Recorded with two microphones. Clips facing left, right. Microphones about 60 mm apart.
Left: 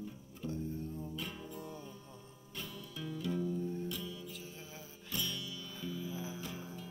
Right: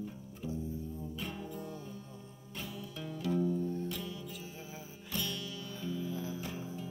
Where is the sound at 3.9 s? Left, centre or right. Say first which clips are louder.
Right 2 dB; right.